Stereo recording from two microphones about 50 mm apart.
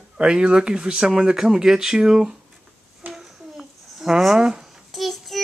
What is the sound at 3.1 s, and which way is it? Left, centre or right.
Babbling, centre.